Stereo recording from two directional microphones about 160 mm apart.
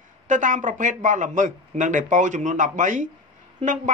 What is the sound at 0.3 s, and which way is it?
A man's voice, 55° right (ahead or behind).